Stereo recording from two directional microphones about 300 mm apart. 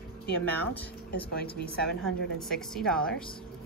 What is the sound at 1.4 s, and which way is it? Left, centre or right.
Speech, left.